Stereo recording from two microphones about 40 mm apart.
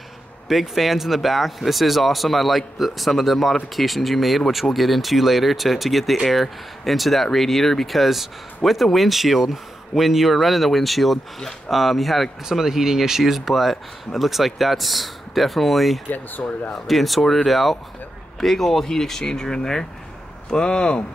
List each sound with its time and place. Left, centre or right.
0.5 s speech: centre
12.4 s speech: centre; by 21.0 s left